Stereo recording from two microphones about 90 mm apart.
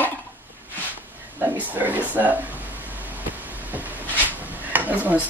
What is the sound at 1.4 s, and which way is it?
Speech, 20° right (ahead or behind).